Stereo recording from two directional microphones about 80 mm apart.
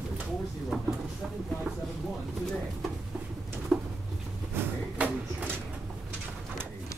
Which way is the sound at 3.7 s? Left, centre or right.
Centre.